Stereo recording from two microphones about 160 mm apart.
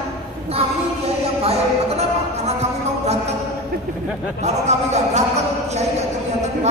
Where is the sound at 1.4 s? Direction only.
40° right (ahead or behind).